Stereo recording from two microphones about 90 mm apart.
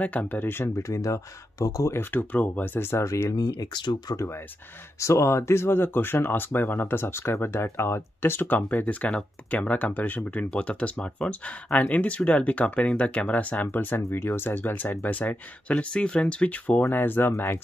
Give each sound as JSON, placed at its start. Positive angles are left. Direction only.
{"t": 0.0, "sound": "speech", "side_deg": 15}
{"t": 3.3, "sound": "speech", "side_deg": 50}
{"t": 4.9, "sound": "speech", "side_deg": 35}